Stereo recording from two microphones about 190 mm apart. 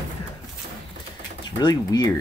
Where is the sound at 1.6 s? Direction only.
20° left (ahead or behind).